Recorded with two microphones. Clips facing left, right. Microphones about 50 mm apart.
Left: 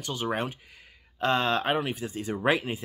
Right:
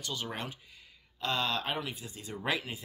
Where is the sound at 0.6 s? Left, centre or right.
Left.